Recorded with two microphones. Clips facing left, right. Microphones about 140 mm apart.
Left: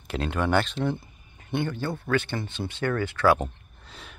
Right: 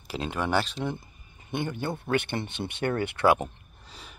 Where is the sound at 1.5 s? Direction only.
15° right (ahead or behind).